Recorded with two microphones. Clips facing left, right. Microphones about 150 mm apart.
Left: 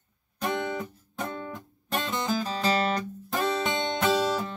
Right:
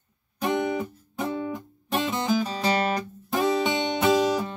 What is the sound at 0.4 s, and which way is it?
Music, 10° right (ahead or behind).